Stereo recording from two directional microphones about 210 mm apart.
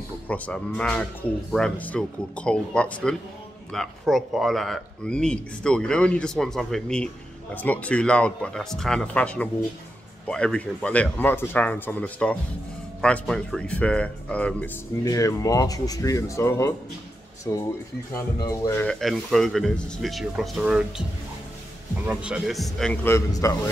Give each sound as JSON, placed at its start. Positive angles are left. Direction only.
{"t": 0.3, "sound": "speech", "side_deg": 5}
{"t": 18.9, "sound": "speech", "side_deg": 0}
{"t": 22.0, "sound": "speech", "side_deg": -5}